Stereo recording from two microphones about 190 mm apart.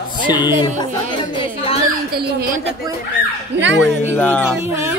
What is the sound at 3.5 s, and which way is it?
Speech, 65° right (ahead or behind).